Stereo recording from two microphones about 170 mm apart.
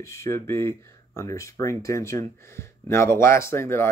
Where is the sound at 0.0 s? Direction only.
15° left (ahead or behind).